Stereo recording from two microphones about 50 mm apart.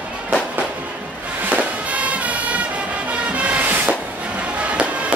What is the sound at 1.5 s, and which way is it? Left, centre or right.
Music, right.